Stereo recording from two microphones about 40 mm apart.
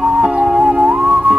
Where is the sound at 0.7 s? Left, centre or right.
Right.